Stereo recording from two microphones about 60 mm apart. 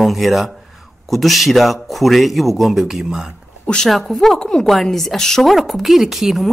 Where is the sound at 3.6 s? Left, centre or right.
Centre.